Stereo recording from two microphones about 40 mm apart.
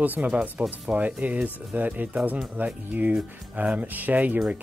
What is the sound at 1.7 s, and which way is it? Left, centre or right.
Speech, right.